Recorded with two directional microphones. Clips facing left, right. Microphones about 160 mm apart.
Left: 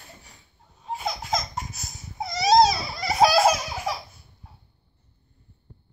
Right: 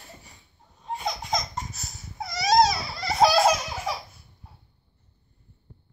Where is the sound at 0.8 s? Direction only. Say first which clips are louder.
Even; 5° left (ahead or behind); by 2.5 s 25° left (ahead or behind).